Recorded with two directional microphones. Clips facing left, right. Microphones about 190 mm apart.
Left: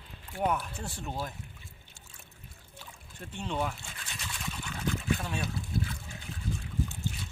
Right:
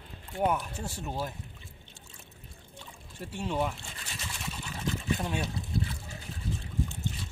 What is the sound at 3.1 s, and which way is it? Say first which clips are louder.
Liquid: right 3 dB; 10° right (ahead or behind).